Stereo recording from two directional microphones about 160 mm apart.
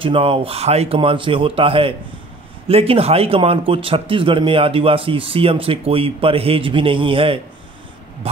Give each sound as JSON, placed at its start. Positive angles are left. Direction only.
{"t": 0.0, "sound": "speech", "side_deg": -35}